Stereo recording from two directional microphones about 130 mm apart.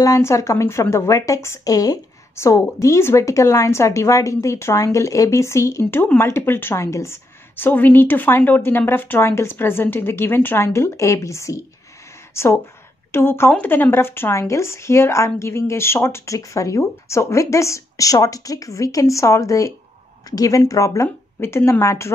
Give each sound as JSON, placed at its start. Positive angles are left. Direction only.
{"t": 0.0, "sound": "speech", "side_deg": 25}
{"t": 13.1, "sound": "speech", "side_deg": 15}